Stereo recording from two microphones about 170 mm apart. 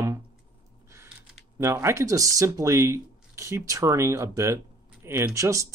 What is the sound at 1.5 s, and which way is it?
Speech, 15° right (ahead or behind).